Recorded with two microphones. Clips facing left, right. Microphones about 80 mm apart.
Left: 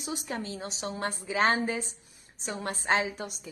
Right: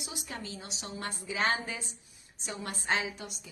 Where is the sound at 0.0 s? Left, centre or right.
Left.